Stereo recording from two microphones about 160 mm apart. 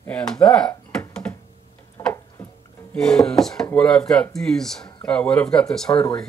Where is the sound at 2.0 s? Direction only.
15° left (ahead or behind).